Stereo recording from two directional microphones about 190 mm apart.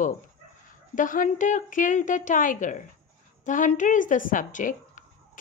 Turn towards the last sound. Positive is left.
turn(degrees=45)  # may be behind; listen again after turning